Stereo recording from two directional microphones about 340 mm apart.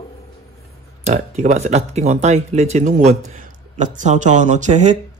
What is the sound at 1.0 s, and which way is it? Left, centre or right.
A man's voice, centre.